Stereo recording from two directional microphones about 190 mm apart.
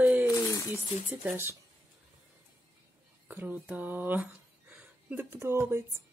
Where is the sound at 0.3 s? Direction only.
15° left (ahead or behind).